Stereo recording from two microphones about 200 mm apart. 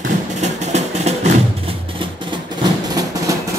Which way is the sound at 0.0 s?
35° right (ahead or behind).